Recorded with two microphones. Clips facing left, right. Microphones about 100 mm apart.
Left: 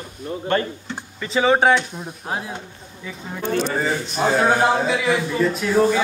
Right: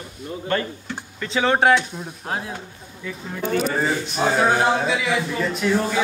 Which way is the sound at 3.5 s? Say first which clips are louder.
Even; 5° right (ahead or behind).